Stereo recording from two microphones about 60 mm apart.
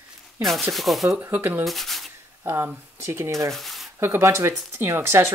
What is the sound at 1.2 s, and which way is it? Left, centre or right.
Speech, right.